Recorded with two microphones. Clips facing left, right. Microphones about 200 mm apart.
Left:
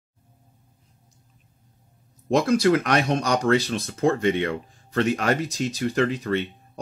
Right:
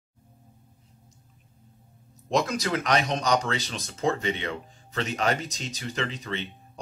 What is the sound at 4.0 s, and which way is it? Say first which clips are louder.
Speech: left 6 dB; 55° left (ahead or behind).